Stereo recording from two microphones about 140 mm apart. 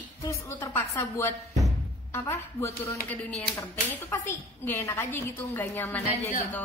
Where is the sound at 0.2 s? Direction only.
20° left (ahead or behind).